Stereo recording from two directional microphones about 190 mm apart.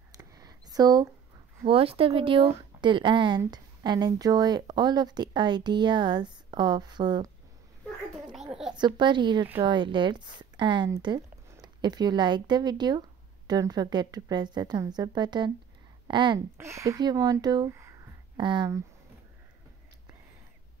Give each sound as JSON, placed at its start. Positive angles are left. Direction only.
{"t": 0.2, "sound": "a sound", "side_deg": -20}
{"t": 1.6, "sound": "speech", "side_deg": -30}
{"t": 8.7, "sound": "speech", "side_deg": -25}